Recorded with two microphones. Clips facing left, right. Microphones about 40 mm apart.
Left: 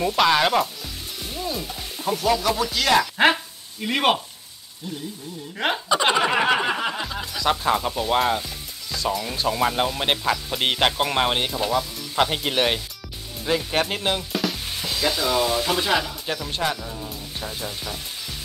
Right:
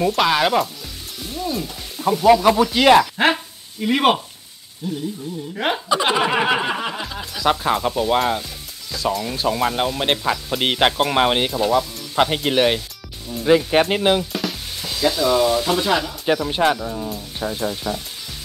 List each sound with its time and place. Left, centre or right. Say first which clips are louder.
0.0 s speech: right 1 dB; centre
1.2 s stir: right 4 dB; centre
2.1 s speech: right 9 dB; centre
3.0 s speech: right 1 dB; centre
5.6 s speech: right 1 dB; centre
11.5 s speech: right 5 dB; centre
13.7 s speech: right 7 dB; centre
14.3 s speech: even; centre
16.4 s speech: right 7 dB; centre